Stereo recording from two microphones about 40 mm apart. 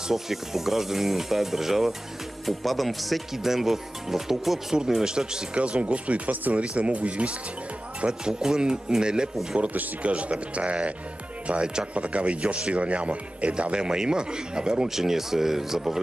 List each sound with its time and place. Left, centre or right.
0.1 s speech: centre
5.6 s speech: right
8.1 s speech: centre
10.0 s speech: right
11.9 s speech: right
15.0 s speech: centre